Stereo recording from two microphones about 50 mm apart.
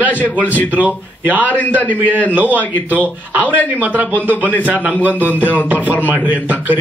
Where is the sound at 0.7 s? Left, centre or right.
Right.